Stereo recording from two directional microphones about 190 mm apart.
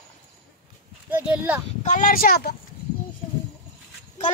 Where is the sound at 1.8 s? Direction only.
40° left (ahead or behind).